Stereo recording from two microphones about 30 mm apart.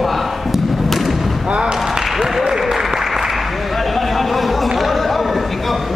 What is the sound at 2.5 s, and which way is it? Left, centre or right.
Applause, centre.